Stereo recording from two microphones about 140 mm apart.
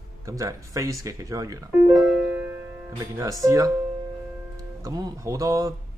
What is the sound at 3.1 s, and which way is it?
Speech, 25° right (ahead or behind).